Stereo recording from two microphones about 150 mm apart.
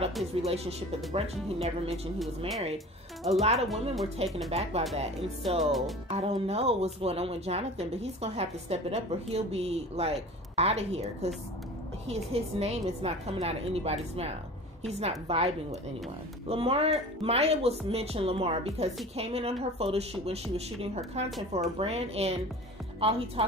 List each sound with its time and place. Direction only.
0.5 s speech: 45° right (ahead or behind)
2.1 s speech: centre (ahead or behind)
3.3 s speech: 45° right (ahead or behind)
5.6 s speech: centre (ahead or behind)
6.0 s speech: 45° right (ahead or behind)
12.1 s speech: 45° right (ahead or behind)